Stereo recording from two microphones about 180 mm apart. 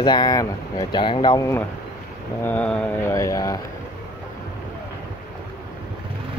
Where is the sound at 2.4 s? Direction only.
5° left (ahead or behind).